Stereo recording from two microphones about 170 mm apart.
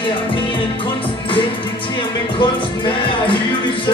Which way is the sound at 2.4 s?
30° left (ahead or behind).